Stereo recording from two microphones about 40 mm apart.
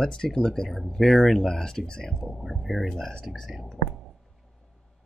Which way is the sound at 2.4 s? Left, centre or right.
Centre.